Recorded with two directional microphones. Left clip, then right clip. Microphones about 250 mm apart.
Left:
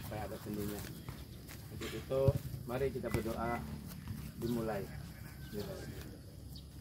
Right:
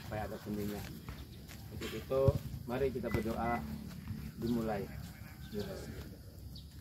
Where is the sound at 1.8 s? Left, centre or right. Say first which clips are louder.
Right 1 dB; centre.